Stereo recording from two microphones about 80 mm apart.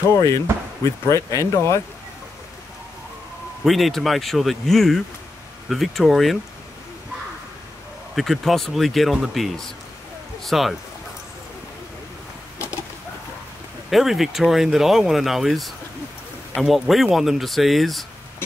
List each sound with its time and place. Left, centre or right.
0.1 s speech: left
3.6 s speech: centre
8.2 s speech: centre
13.8 s speech: centre